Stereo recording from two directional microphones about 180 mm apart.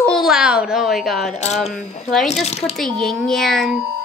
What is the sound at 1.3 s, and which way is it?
Speech, 40° left (ahead or behind).